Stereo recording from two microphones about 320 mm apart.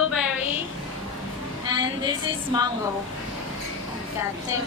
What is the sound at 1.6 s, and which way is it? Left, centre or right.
A woman's voice, centre.